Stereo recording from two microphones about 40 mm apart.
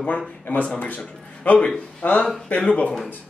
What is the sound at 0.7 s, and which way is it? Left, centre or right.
A man's voice, left.